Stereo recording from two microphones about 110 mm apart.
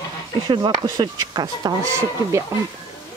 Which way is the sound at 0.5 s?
40° right (ahead or behind).